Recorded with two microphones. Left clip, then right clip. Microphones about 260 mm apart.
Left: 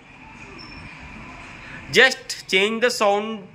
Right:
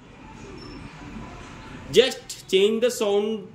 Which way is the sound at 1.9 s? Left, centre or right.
Centre.